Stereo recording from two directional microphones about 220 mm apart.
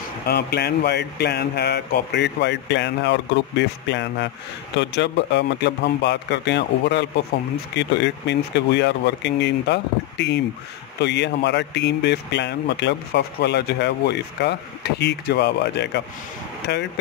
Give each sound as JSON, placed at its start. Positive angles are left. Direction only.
{"t": 0.3, "sound": "speech", "side_deg": 50}